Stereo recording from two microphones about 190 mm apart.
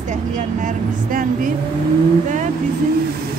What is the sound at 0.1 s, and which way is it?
Speech, 40° right (ahead or behind).